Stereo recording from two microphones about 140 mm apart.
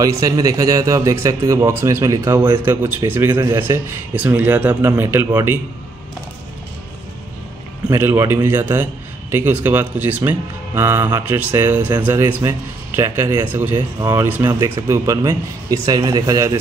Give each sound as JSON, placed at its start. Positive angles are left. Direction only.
{"t": 0.0, "sound": "a man's voice", "side_deg": -25}
{"t": 7.9, "sound": "a man's voice", "side_deg": -20}